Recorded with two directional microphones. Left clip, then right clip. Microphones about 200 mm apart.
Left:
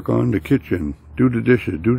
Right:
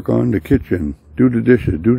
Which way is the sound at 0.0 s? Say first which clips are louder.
Right 3 dB; 15° right (ahead or behind).